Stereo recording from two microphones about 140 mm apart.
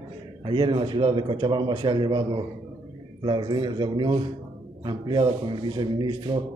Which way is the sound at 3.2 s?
35° right (ahead or behind).